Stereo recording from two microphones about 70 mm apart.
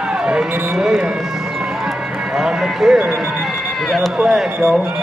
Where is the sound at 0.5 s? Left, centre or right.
Right.